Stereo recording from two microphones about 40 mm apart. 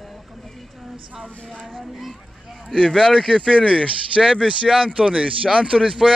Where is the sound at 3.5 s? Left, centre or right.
Right.